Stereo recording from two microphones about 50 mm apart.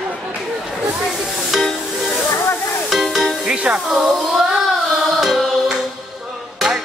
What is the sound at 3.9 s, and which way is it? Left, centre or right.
Speech, centre.